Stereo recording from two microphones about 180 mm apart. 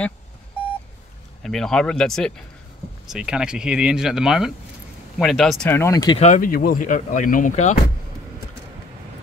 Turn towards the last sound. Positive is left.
turn(degrees=45)  # may be behind; listen again after turning